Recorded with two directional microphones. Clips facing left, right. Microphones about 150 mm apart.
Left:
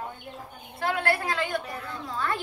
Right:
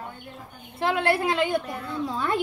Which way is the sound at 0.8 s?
20° right (ahead or behind).